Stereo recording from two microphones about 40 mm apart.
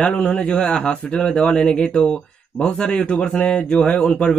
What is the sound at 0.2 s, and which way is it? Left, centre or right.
Speech, left.